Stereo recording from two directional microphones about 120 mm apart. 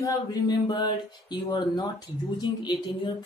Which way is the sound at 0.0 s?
35° left (ahead or behind).